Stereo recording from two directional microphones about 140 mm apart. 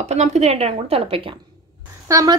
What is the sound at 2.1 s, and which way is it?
Speech, 25° right (ahead or behind).